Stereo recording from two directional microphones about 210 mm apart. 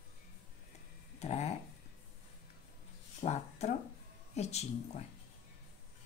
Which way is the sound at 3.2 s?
30° left (ahead or behind).